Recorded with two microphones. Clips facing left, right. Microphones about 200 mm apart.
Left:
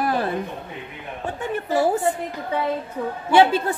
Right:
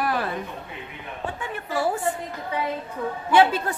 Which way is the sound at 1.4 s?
40° left (ahead or behind).